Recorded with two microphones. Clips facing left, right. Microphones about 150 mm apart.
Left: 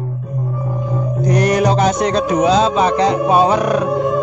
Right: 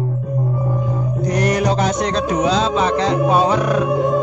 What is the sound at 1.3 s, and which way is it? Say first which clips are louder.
Music: left 3 dB; 15° left (ahead or behind).